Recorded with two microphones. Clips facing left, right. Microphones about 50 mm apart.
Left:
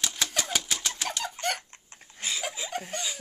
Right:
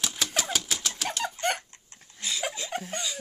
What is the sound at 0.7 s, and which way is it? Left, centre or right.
Bird, centre.